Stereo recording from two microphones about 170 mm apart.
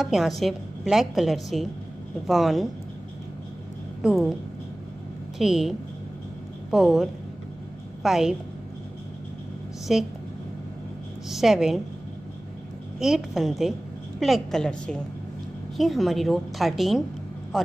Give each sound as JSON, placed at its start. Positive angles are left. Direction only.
{"t": 0.0, "sound": "a woman's voice", "side_deg": 0}
{"t": 4.0, "sound": "a woman's voice", "side_deg": -5}
{"t": 5.4, "sound": "a woman's voice", "side_deg": 0}
{"t": 9.9, "sound": "a woman's voice", "side_deg": 0}
{"t": 11.2, "sound": "a woman's voice", "side_deg": 0}
{"t": 13.0, "sound": "a woman's voice", "side_deg": -5}